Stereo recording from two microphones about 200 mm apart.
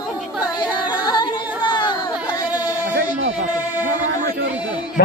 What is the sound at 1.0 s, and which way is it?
Yodeling, 20° left (ahead or behind).